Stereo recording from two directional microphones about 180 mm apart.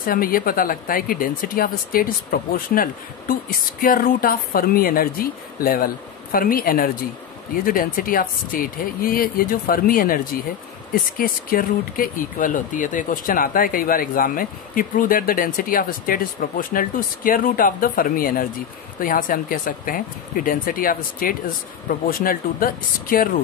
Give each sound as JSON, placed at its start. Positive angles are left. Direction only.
{"t": 0.0, "sound": "speech", "side_deg": 50}